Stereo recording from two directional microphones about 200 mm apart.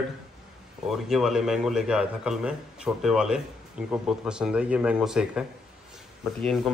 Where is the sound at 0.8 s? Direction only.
Centre (ahead or behind).